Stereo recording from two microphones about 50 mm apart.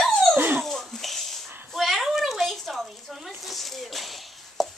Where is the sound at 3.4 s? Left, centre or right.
Centre.